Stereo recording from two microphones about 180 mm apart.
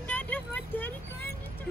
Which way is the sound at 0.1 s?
10° left (ahead or behind).